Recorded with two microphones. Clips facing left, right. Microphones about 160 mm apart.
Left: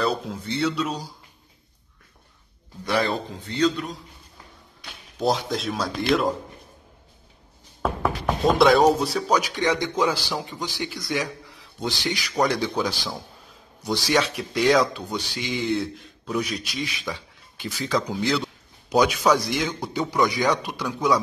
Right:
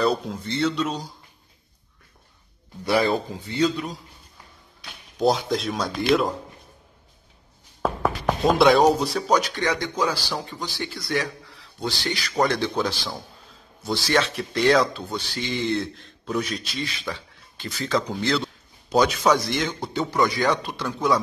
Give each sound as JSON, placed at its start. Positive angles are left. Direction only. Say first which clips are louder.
{"t": 0.0, "sound": "speech", "louder": "right 2 dB", "side_deg": 0}
{"t": 2.8, "sound": "a man's voice", "louder": "right 3 dB", "side_deg": -5}
{"t": 5.2, "sound": "a man's voice", "louder": "right 2 dB", "side_deg": 0}
{"t": 7.8, "sound": "a man's voice", "louder": "right 1 dB", "side_deg": 0}